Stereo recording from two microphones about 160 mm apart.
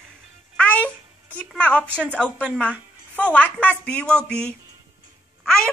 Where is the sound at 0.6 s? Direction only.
10° left (ahead or behind).